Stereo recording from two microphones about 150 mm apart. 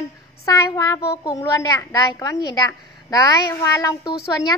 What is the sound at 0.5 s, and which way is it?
A child's voice, 20° left (ahead or behind).